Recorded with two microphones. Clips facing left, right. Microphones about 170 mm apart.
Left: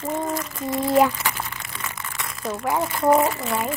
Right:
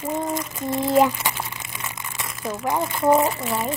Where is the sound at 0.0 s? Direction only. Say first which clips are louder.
Even; 20° right (ahead or behind).